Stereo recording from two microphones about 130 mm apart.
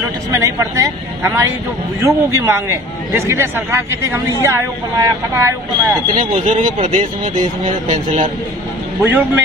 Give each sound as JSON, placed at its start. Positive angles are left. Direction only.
{"t": 0.3, "sound": "a man's voice", "side_deg": -25}
{"t": 6.1, "sound": "speech", "side_deg": -75}
{"t": 9.0, "sound": "speech", "side_deg": -15}